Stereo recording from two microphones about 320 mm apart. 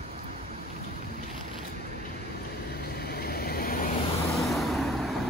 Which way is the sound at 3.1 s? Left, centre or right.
Left.